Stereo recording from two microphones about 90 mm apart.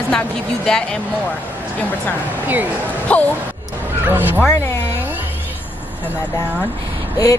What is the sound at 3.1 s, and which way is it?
Speech, 15° left (ahead or behind).